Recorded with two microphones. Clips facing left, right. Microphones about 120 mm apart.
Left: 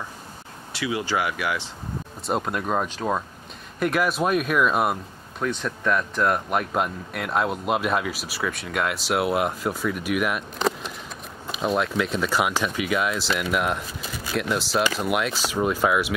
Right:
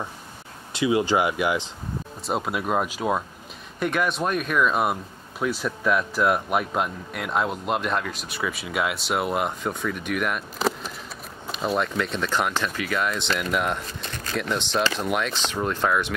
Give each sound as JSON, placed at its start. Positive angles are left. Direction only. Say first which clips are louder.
{"t": 0.7, "sound": "speech", "louder": "right 5 dB", "side_deg": -20}
{"t": 2.2, "sound": "speech", "louder": "left 1 dB", "side_deg": 0}
{"t": 3.8, "sound": "speech", "louder": "left 2 dB", "side_deg": 5}